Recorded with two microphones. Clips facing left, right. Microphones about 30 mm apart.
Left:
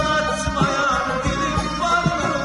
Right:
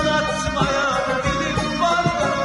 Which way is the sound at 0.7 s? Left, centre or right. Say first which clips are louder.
Left 1 dB; centre.